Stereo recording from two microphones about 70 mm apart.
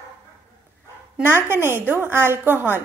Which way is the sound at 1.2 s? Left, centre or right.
Right.